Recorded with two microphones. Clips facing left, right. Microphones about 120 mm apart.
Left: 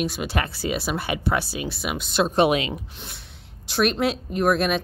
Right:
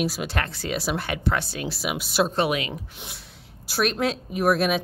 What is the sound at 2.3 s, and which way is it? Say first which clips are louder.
Speech: left 5 dB; 25° left (ahead or behind).